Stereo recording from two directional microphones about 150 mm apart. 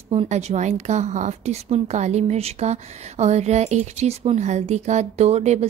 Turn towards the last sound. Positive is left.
turn(degrees=-45)  # may be behind; listen again after turning